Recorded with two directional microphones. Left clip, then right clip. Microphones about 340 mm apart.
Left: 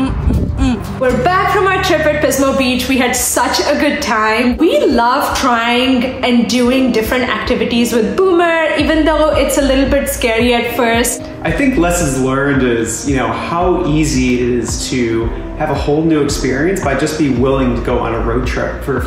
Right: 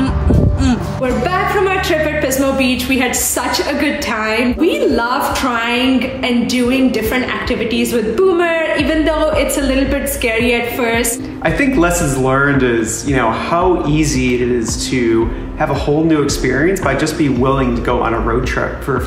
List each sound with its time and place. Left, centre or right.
1.2 s a woman's voice: centre
11.4 s a man's voice: centre